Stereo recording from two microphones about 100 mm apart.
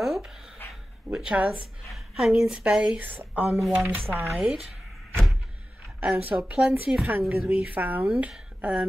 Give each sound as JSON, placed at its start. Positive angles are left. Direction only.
{"t": 0.0, "sound": "dog", "side_deg": 0}
{"t": 1.1, "sound": "a woman's voice", "side_deg": -10}
{"t": 3.4, "sound": "a woman's voice", "side_deg": 0}
{"t": 4.1, "sound": "a woman's voice", "side_deg": -25}
{"t": 4.4, "sound": "a woman's voice", "side_deg": -5}
{"t": 5.9, "sound": "a woman's voice", "side_deg": -15}
{"t": 7.2, "sound": "a woman's voice", "side_deg": -20}